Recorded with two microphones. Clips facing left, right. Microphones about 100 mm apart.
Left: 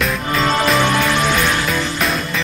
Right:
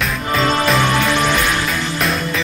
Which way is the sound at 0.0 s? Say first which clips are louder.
Even; centre (ahead or behind).